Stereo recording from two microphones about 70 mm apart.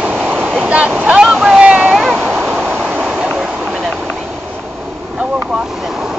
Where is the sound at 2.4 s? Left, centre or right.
Centre.